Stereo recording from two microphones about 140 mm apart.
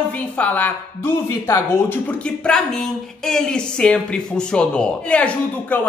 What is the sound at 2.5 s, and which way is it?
Speech, 5° left (ahead or behind).